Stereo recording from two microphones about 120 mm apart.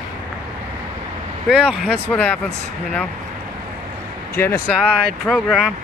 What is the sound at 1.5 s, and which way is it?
Speech, 5° right (ahead or behind).